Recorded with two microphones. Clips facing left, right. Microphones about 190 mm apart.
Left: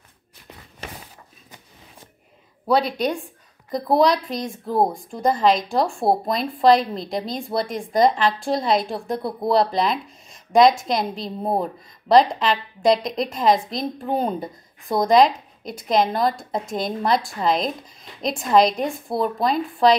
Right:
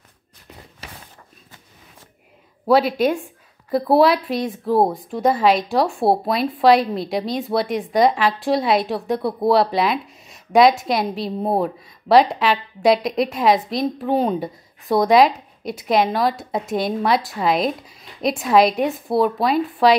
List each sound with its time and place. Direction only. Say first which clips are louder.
2.7 s a woman's voice: right 4 dB; 5° right (ahead or behind)